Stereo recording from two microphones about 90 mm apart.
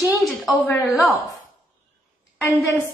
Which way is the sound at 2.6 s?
35° left (ahead or behind).